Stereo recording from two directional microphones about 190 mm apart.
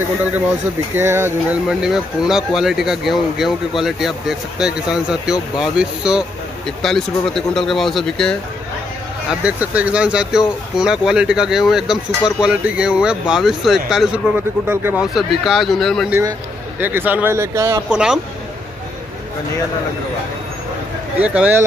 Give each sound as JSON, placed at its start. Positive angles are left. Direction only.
{"t": 0.9, "sound": "speech", "side_deg": -10}
{"t": 16.1, "sound": "speech", "side_deg": -15}
{"t": 17.9, "sound": "speech", "side_deg": -5}
{"t": 21.2, "sound": "speech", "side_deg": -5}